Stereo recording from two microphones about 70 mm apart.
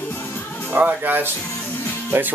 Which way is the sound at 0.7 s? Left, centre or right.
Right.